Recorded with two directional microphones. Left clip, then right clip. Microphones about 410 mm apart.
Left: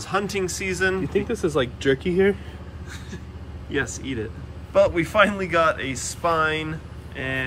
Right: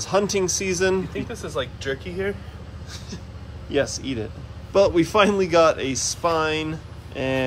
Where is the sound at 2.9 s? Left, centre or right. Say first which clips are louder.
Right 1 dB; centre.